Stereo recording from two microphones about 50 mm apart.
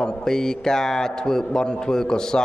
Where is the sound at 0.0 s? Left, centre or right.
Centre.